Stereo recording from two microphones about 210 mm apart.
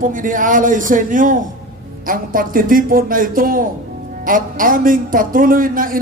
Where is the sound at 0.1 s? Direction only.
40° right (ahead or behind).